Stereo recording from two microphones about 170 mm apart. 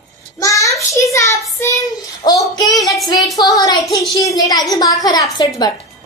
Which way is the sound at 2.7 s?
Centre (ahead or behind).